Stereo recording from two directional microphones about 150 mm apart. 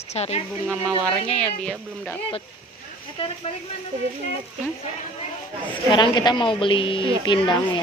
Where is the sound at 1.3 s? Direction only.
5° left (ahead or behind).